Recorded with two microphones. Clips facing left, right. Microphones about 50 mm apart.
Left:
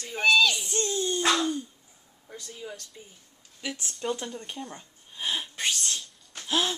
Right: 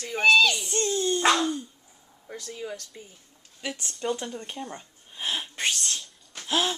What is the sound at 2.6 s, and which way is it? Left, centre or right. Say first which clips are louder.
Speech: right 4 dB; right.